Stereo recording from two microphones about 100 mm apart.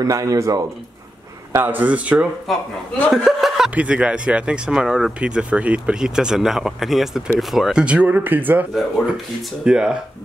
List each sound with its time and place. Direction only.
0.0 s speech: 35° right (ahead or behind)
1.5 s speech: 20° right (ahead or behind)
2.5 s speech: centre (ahead or behind); by 8.6 s 20° right (ahead or behind)
8.7 s speech: centre (ahead or behind)